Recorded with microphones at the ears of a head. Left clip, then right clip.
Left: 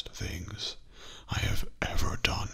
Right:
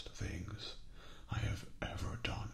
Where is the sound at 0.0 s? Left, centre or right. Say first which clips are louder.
Left 8 dB; left.